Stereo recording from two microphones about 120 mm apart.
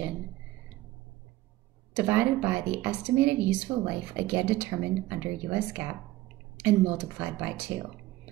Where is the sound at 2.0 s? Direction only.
15° right (ahead or behind).